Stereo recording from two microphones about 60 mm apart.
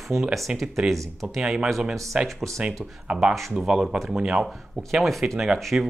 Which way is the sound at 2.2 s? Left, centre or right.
Centre.